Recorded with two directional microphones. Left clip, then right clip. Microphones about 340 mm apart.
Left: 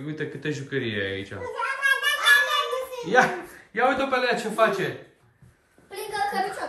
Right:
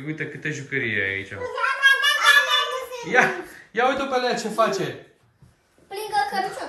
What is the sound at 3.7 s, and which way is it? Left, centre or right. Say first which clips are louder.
Speech: right 1 dB; centre.